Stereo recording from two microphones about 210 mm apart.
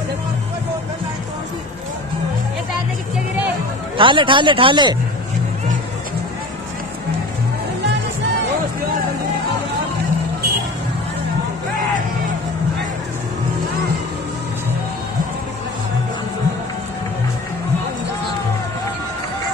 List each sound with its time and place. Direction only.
4.0 s speech: 25° right (ahead or behind)